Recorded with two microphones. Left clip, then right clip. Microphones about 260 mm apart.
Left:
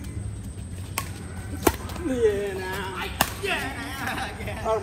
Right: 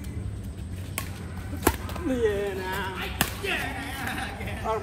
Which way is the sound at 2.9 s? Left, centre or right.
Centre.